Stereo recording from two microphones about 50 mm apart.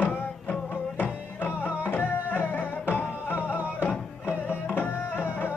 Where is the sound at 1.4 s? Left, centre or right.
Left.